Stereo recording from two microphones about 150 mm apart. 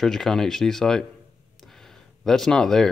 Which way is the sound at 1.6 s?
Centre (ahead or behind).